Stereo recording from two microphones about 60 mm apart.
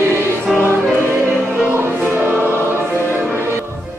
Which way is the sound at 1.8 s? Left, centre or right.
Right.